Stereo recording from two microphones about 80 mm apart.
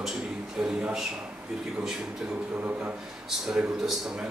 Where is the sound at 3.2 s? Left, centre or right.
Centre.